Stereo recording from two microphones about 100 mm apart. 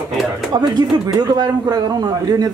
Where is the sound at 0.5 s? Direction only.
45° right (ahead or behind).